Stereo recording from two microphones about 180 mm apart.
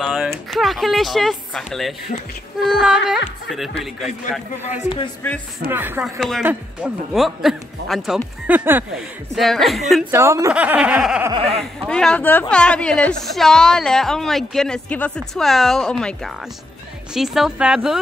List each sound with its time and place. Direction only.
0.0 s a woman's voice: 5° right (ahead or behind)
4.8 s speech: 25° left (ahead or behind)
5.7 s snicker: 10° right (ahead or behind)
6.4 s a woman's voice: 5° right (ahead or behind)
8.5 s snicker: 10° right (ahead or behind)
9.3 s a woman's voice: centre (ahead or behind)
10.1 s snicker: 15° right (ahead or behind)
11.3 s speech: 30° right (ahead or behind)
11.9 s a woman's voice: 5° left (ahead or behind)